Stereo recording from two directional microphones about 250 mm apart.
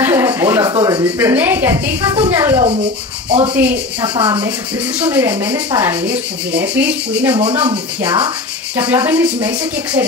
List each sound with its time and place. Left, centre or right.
0.0 s a sound: centre
0.7 s speech: centre
3.5 s speech: centre
4.1 s speech: centre
4.9 s speech: centre
7.3 s speech: centre